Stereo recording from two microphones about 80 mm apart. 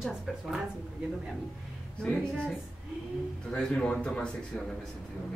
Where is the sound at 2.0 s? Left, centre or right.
Centre.